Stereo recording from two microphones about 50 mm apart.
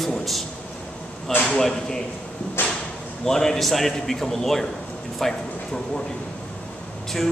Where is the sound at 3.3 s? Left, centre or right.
Centre.